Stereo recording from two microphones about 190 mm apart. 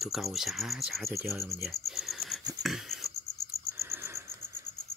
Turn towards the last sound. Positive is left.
turn(degrees=0)  # may be behind; listen again after turning